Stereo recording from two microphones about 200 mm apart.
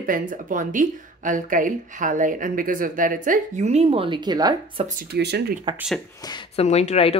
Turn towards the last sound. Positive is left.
turn(degrees=30)  # may be behind; listen again after turning